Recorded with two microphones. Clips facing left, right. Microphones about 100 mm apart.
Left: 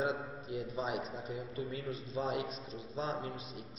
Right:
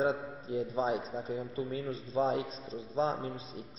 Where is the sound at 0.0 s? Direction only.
30° right (ahead or behind).